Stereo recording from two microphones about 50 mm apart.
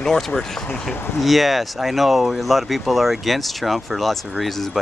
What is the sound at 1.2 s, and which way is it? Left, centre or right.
Speech, centre.